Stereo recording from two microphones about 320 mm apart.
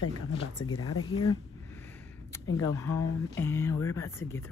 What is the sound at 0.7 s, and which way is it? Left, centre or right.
Speech, left.